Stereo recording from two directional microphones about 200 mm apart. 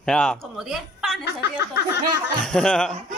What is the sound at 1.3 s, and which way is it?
Speech, 55° left (ahead or behind).